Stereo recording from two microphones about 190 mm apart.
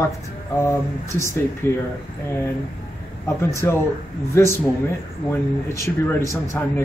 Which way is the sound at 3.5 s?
15° left (ahead or behind).